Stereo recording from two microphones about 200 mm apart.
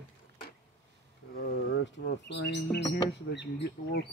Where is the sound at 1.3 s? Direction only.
50° left (ahead or behind).